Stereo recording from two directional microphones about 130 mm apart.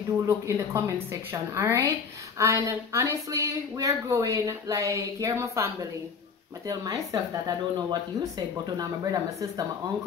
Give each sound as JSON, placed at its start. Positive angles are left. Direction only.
{"t": 0.3, "sound": "speech", "side_deg": -25}